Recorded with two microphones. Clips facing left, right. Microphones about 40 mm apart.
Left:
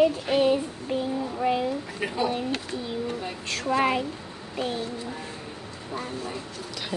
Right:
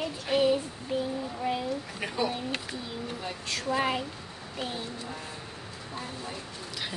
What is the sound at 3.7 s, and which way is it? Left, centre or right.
Speech, left.